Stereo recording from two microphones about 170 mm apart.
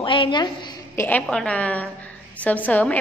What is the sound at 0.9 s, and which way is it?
A woman's voice, 10° left (ahead or behind).